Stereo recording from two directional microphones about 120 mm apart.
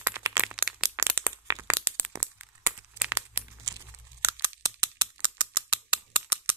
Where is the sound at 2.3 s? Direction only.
15° right (ahead or behind).